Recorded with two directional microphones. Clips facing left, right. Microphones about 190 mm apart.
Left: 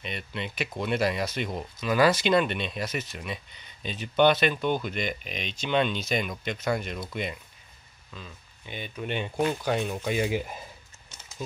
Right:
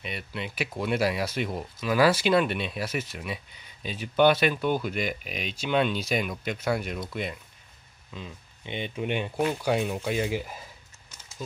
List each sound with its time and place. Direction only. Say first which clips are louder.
0.0 s speech: even; 5° right (ahead or behind)
8.1 s speech: right 4 dB; 20° right (ahead or behind)
9.2 s speech: left 3 dB; 5° right (ahead or behind)
10.1 s speech: left 4 dB; 15° left (ahead or behind)